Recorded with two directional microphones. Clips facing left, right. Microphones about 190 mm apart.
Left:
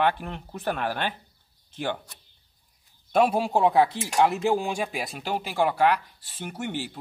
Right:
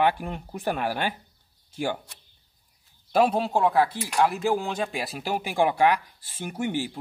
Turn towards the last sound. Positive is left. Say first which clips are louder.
# right 4 dB
turn(degrees=-10)  # may be behind; listen again after turning